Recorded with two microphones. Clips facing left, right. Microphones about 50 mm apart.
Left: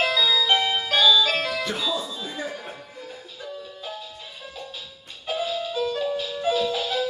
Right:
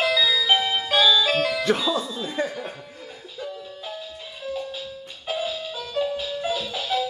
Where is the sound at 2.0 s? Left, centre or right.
Centre.